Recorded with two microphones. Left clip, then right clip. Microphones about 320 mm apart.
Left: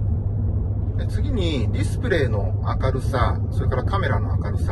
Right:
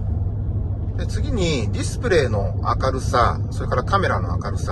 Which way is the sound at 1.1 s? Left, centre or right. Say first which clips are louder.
Right 3 dB; centre.